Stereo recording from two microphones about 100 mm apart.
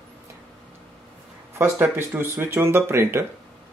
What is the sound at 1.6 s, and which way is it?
Speech, 25° right (ahead or behind).